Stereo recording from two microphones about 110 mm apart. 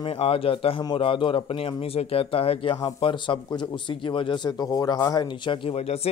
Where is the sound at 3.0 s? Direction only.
50° left (ahead or behind).